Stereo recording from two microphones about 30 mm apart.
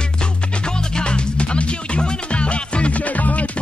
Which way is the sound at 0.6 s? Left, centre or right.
Left.